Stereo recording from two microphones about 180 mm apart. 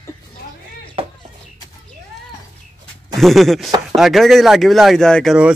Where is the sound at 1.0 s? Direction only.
30° right (ahead or behind).